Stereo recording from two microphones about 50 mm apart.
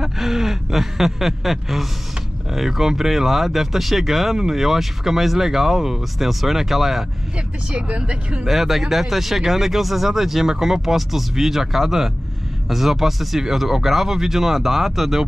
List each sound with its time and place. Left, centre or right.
0.0 s a sound: centre
2.5 s speech: centre
7.7 s speech: right
8.5 s speech: centre